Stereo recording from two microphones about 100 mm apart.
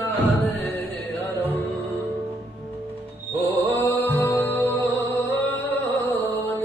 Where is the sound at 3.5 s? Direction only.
20° left (ahead or behind).